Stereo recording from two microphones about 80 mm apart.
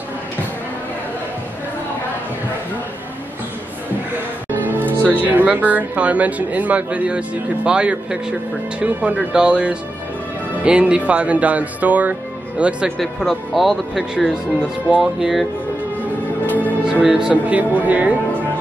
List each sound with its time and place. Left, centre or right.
4.5 s speech: right
12.9 s speech: centre
16.8 s speech: centre